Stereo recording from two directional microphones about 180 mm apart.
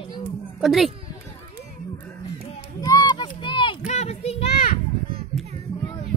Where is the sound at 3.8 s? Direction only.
40° left (ahead or behind).